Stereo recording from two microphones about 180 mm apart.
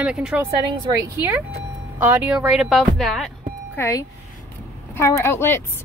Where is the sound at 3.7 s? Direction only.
15° left (ahead or behind).